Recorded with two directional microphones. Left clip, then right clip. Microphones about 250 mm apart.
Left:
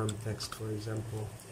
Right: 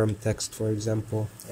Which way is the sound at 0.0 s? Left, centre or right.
Right.